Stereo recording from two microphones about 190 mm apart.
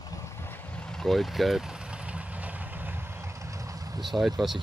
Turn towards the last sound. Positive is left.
turn(degrees=0)  # may be behind; listen again after turning